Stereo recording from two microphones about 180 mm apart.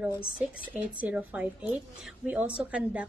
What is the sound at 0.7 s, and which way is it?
A woman's voice, 10° right (ahead or behind).